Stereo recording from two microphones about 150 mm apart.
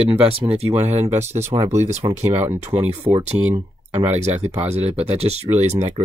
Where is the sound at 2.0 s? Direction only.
35° right (ahead or behind).